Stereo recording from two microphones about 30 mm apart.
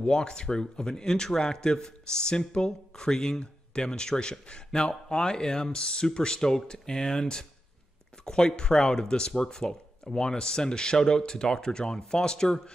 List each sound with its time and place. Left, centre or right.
0.1 s a man's voice: left